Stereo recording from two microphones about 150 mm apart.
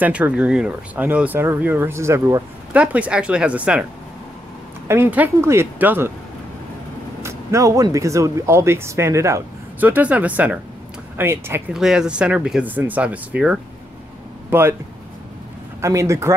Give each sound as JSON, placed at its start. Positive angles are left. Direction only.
{"t": 0.0, "sound": "speech", "side_deg": -10}
{"t": 2.7, "sound": "speech", "side_deg": -10}
{"t": 4.8, "sound": "speech", "side_deg": -15}
{"t": 7.2, "sound": "speech", "side_deg": -20}
{"t": 11.7, "sound": "speech", "side_deg": -5}
{"t": 15.8, "sound": "speech", "side_deg": -20}